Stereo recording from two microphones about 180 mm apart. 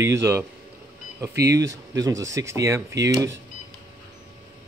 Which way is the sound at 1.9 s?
20° right (ahead or behind).